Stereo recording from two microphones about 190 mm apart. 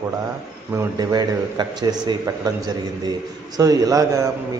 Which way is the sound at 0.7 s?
20° right (ahead or behind).